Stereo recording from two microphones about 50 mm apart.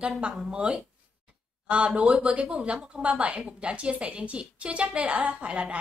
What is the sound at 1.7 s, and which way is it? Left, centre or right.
A woman's voice, right.